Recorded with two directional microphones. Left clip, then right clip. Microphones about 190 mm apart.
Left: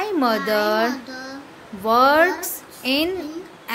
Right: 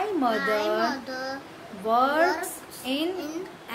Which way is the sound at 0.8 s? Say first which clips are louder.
Left 3 dB; 10° left (ahead or behind).